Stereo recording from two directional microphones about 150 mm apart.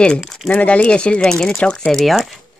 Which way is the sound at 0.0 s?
5° left (ahead or behind).